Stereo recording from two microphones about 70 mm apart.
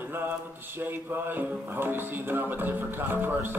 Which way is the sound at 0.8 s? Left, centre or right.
Right.